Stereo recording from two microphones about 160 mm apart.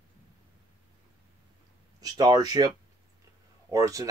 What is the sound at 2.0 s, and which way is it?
Speech, 25° right (ahead or behind).